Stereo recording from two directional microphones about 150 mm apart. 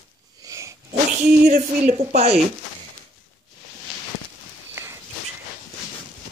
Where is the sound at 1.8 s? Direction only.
45° right (ahead or behind).